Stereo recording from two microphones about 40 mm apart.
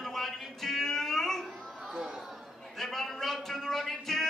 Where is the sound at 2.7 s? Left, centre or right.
Centre.